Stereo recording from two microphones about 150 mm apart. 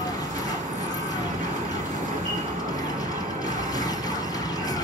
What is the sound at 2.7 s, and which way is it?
Vehicle, 25° left (ahead or behind).